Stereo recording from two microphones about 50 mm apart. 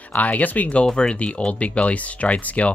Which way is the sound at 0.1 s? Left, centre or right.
Left.